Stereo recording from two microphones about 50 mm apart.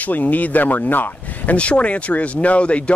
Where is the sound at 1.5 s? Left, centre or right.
Left.